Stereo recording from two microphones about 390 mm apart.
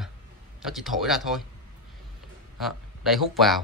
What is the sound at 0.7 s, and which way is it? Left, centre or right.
Speech, centre.